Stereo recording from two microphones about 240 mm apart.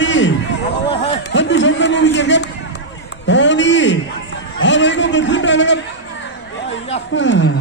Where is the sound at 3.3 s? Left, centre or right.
Left.